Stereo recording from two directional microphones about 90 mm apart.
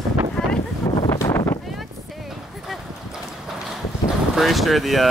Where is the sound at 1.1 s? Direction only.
35° left (ahead or behind).